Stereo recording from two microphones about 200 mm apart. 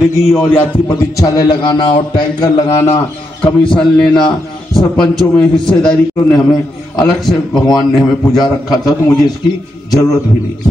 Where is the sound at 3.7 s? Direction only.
5° left (ahead or behind).